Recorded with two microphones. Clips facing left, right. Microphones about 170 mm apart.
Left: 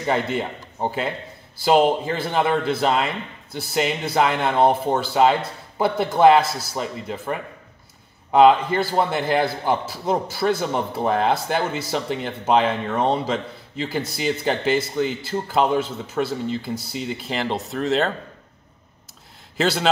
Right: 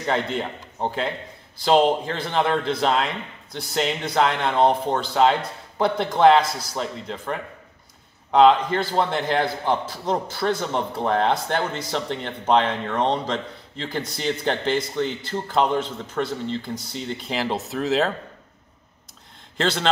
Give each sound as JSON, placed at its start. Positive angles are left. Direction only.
{"t": 0.0, "sound": "a man's voice", "side_deg": 5}
{"t": 19.5, "sound": "a man's voice", "side_deg": 5}